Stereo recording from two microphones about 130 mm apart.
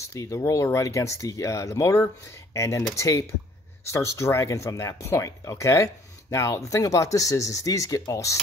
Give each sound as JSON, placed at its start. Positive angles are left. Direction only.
{"t": 0.0, "sound": "speech", "side_deg": 25}